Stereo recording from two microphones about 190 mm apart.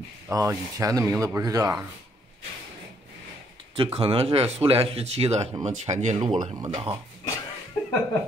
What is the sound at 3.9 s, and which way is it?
Speech, 30° right (ahead or behind).